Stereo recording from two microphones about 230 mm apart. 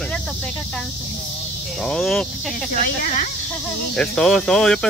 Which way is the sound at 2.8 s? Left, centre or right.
Left.